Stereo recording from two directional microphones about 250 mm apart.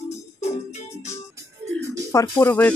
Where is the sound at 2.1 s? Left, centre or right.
Centre.